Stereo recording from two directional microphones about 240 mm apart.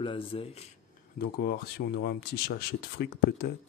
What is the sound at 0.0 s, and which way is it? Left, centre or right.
Speech, left.